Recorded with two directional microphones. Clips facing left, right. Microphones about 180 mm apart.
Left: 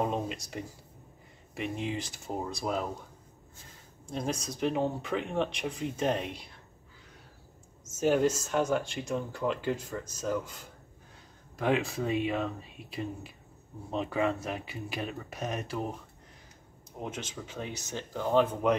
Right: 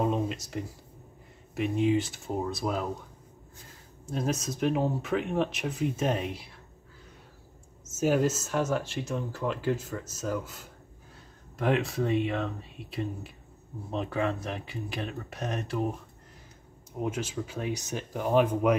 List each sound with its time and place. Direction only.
0.0 s a sound: centre (ahead or behind)
1.5 s speech: centre (ahead or behind)
4.0 s speech: 5° right (ahead or behind)
8.0 s speech: 5° right (ahead or behind)
17.0 s speech: 10° right (ahead or behind)